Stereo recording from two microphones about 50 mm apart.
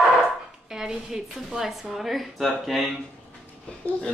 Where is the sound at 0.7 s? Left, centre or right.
Centre.